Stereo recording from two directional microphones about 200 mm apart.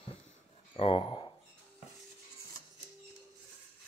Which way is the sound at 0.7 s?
30° left (ahead or behind).